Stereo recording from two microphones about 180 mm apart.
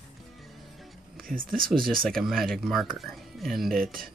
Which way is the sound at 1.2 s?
50° right (ahead or behind).